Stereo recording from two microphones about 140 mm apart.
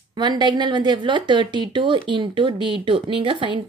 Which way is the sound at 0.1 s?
30° right (ahead or behind).